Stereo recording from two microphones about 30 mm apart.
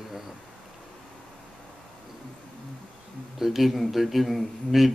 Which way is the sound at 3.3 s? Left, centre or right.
Centre.